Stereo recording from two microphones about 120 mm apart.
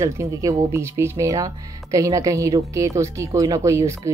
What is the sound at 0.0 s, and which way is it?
A woman's voice, 25° right (ahead or behind).